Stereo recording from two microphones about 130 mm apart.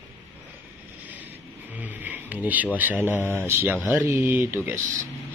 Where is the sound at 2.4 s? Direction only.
10° right (ahead or behind).